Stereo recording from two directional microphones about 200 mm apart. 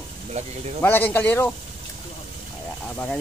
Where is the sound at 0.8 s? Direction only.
10° left (ahead or behind).